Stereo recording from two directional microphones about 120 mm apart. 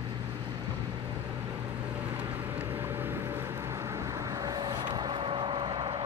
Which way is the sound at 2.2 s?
15° right (ahead or behind).